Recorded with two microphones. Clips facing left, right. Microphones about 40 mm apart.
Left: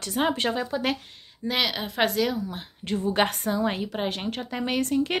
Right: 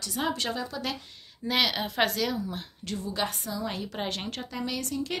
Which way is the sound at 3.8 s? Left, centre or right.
Centre.